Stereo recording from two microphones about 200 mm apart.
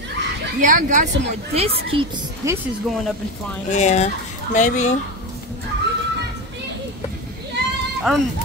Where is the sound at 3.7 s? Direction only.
35° left (ahead or behind).